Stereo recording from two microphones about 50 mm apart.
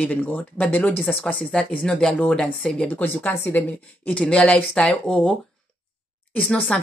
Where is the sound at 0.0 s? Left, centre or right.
Left.